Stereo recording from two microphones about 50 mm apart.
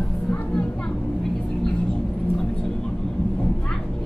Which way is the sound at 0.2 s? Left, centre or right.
Left.